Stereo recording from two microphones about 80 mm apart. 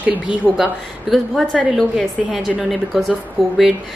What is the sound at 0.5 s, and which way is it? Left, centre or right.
A woman's voice, centre.